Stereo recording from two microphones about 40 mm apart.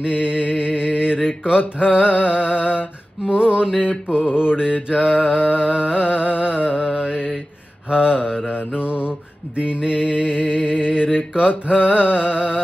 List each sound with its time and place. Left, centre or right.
0.0 s music: right
1.2 s mantra: centre
1.8 s music: right
9.6 s music: right